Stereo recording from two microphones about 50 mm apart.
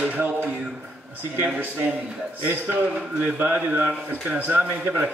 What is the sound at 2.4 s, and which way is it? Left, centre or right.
Speech, right.